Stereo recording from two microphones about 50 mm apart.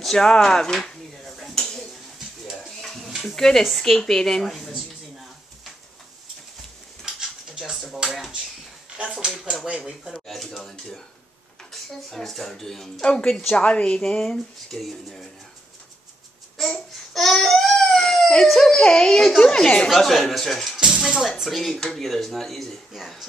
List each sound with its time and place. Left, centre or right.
0.0 s speech: centre
0.8 s a sound: centre
2.8 s stir: centre
3.3 s speech: centre
7.2 s dishes: centre
8.0 s a sound: centre
9.7 s speech: centre
10.3 s speech: centre
16.6 s babbling: centre
17.1 s baby cry: centre
19.9 s speech: centre